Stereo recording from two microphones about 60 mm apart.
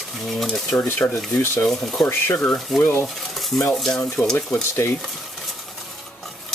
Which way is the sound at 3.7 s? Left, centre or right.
Centre.